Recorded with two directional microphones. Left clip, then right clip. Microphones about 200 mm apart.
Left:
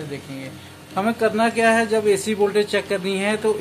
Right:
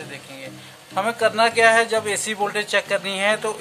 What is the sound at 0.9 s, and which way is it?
A man's voice, 25° right (ahead or behind).